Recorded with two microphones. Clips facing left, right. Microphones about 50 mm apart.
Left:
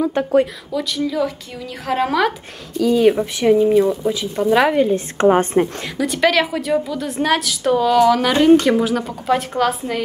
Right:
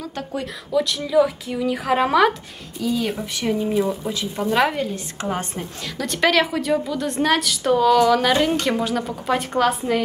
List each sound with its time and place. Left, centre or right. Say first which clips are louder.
0.0 s speech: left 12 dB; left
0.7 s a woman's voice: right 2 dB; centre
3.0 s speech: left 10 dB; centre
3.7 s a woman's voice: left 6 dB; centre
4.9 s a woman's voice: left 12 dB; left
5.9 s a woman's voice: left 2 dB; centre